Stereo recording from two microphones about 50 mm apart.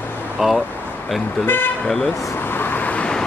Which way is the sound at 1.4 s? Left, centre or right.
Left.